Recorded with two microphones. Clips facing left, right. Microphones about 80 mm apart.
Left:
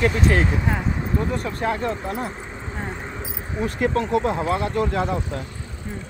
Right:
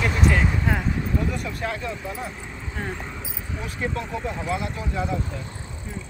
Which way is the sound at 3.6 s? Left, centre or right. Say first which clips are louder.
Left 8 dB; left.